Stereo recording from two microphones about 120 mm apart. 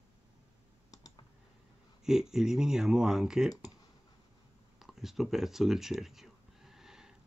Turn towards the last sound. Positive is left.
turn(degrees=-5)  # may be behind; listen again after turning